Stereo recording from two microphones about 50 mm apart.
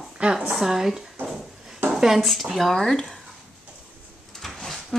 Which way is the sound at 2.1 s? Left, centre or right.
Centre.